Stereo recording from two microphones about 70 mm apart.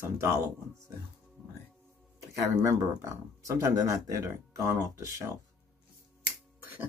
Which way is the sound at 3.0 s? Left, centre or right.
Right.